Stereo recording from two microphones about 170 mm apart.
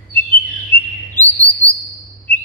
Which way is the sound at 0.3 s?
30° right (ahead or behind).